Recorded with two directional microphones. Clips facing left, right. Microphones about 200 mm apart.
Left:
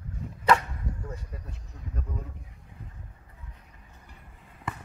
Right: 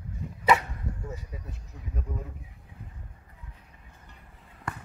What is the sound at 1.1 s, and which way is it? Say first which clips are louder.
Speech: right 1 dB; 5° right (ahead or behind).